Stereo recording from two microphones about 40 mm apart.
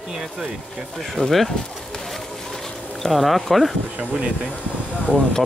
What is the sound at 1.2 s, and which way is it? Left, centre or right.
Speech, centre.